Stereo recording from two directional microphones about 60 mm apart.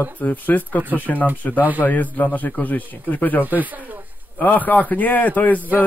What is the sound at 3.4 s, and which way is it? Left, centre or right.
Speech, right.